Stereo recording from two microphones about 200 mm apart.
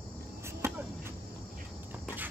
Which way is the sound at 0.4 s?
15° right (ahead or behind).